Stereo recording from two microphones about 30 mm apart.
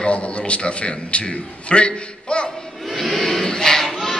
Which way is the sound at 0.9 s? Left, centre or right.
Left.